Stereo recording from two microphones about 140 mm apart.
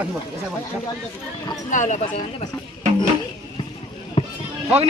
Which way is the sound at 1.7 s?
60° left (ahead or behind).